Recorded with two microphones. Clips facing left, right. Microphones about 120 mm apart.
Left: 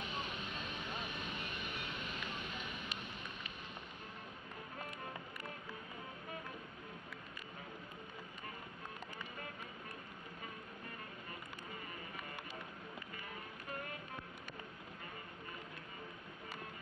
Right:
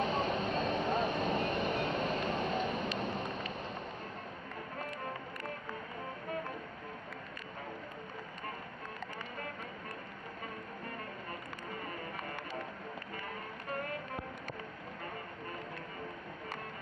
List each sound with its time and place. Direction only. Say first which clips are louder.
0.0 s vehicle: right 12 dB; 35° right (ahead or behind)
11.7 s music: right 8 dB; 45° right (ahead or behind)